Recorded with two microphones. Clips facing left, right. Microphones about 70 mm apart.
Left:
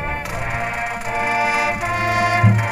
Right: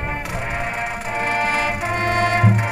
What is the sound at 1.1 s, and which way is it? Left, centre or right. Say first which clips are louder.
Music: left 2 dB; centre.